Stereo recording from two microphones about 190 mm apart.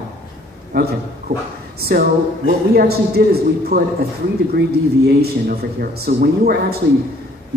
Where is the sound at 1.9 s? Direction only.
60° right (ahead or behind).